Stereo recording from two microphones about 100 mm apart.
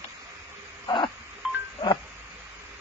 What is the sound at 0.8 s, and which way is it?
Telephone dialing, 50° left (ahead or behind).